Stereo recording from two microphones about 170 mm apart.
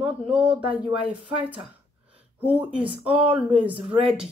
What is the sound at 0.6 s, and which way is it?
Speech, 35° right (ahead or behind).